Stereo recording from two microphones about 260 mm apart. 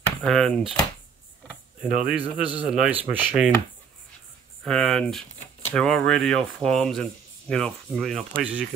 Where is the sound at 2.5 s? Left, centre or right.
Centre.